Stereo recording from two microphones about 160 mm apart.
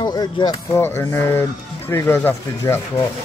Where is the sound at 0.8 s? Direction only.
15° left (ahead or behind).